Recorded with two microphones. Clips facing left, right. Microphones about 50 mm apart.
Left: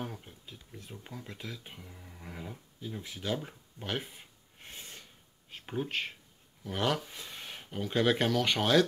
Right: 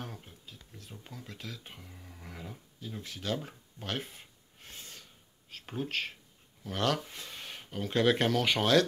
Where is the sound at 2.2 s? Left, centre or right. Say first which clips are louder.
Left 2 dB; centre.